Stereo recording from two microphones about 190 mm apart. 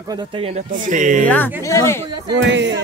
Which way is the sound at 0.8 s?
40° right (ahead or behind).